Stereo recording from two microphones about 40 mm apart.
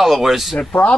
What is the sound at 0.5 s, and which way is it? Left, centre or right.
Speech, left.